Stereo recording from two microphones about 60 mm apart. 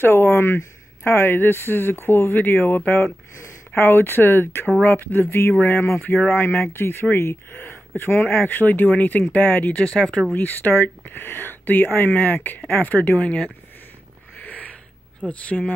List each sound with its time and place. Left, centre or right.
0.0 s speech: left; by 10.2 s centre
10.3 s speech: left
14.3 s a sound: left
15.2 s speech: left